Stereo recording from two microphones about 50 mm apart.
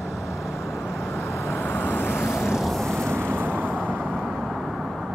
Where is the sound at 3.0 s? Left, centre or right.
Right.